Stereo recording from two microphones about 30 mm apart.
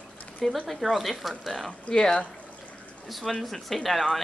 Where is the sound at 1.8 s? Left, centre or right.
Left.